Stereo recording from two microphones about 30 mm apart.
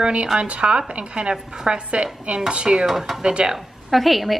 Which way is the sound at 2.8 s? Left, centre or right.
Centre.